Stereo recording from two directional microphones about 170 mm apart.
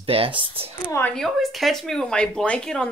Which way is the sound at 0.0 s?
35° right (ahead or behind).